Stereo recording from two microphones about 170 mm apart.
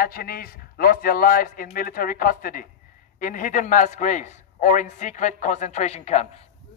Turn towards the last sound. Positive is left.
turn(degrees=40)  # may be behind; listen again after turning